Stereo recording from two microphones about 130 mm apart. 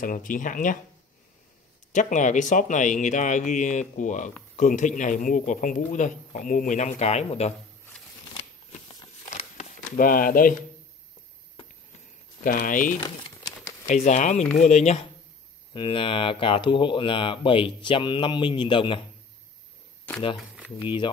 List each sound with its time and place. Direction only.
0.0 s speech: 90° left
1.9 s a man's voice: 75° left (ahead or behind); by 7.5 s 55° left (ahead or behind)
9.3 s crumpling: 70° left (ahead or behind); by 10.5 s 90° left
12.4 s speech: 90° left
13.0 s a sound: 30° left (ahead or behind)
13.8 s speech: 65° left (ahead or behind)
15.7 s speech: 40° left (ahead or behind)
20.3 s speech: 10° right (ahead or behind)